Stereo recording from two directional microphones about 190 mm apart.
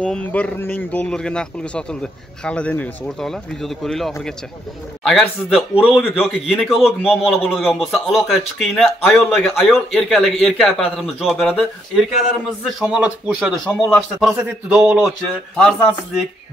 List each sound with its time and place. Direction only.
0.0 s a man's voice: 5° left (ahead or behind)
14.8 s a sound: 10° right (ahead or behind)
15.0 s a man's voice: centre (ahead or behind)